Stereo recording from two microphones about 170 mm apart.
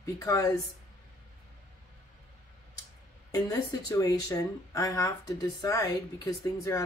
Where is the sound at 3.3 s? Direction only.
20° left (ahead or behind).